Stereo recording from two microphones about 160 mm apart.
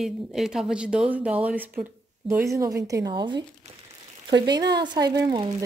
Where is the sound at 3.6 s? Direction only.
45° right (ahead or behind).